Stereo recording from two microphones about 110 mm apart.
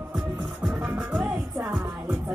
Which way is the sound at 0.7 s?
15° right (ahead or behind).